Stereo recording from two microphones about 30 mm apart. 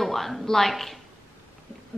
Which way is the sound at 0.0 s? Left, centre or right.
Centre.